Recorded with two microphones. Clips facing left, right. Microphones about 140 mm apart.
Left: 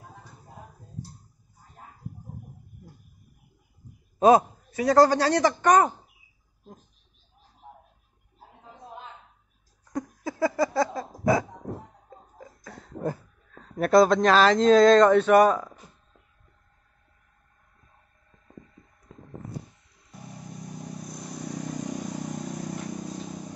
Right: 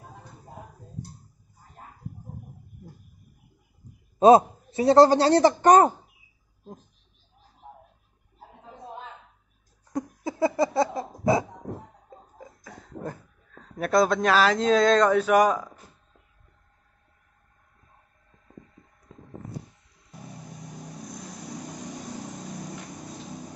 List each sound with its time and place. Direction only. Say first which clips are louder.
4.2 s a man's voice: right 3 dB; 25° right (ahead or behind)
9.9 s a sound: right 1 dB; 20° right (ahead or behind)
13.7 s speech: left 4 dB; centre (ahead or behind)